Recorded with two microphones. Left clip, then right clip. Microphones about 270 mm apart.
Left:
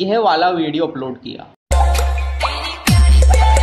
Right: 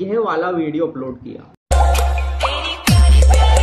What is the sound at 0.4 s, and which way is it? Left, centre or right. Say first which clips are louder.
Speech: left 3 dB; centre.